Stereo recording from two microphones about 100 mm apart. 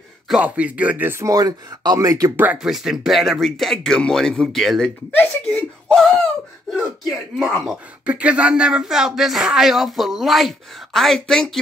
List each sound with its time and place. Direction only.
0.3 s speech: 15° right (ahead or behind)
1.2 s speech: 35° right (ahead or behind)
2.3 s speech: 15° right (ahead or behind)
2.6 s speech: 5° right (ahead or behind)